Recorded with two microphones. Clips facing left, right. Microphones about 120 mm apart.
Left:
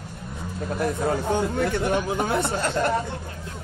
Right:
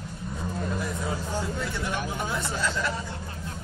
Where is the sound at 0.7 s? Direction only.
60° left (ahead or behind).